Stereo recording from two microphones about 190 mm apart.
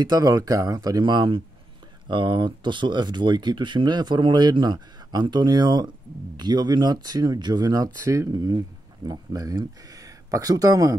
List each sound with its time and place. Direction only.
0.0 s speech: 20° right (ahead or behind)